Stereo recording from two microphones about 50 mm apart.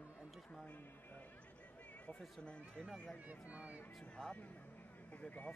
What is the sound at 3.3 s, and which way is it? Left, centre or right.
Speech, right.